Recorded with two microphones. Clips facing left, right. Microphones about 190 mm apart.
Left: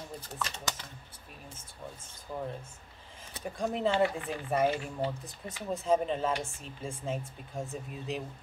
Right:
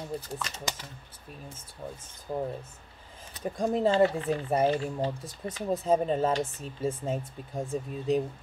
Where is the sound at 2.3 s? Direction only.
40° right (ahead or behind).